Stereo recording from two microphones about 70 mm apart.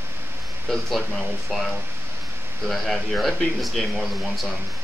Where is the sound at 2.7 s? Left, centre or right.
Centre.